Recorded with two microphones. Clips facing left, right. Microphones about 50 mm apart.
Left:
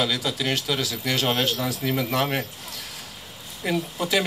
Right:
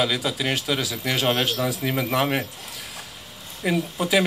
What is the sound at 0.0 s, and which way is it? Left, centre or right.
Speech, centre.